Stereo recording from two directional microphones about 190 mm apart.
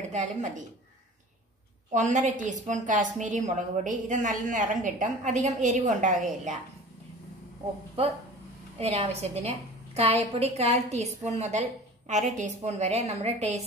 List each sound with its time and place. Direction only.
0.1 s a woman's voice: 40° right (ahead or behind)
1.9 s a woman's voice: 40° right (ahead or behind)
8.7 s a woman's voice: 35° right (ahead or behind)